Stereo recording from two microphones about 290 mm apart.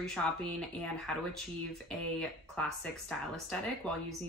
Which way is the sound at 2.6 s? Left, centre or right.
Centre.